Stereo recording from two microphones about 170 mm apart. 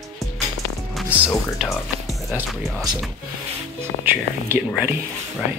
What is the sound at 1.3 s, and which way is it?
Speech, centre (ahead or behind).